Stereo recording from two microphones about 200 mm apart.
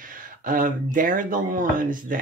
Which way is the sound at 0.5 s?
40° right (ahead or behind).